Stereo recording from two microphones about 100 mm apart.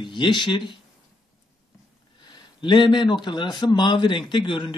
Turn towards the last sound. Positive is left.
turn(degrees=55)  # may be behind; listen again after turning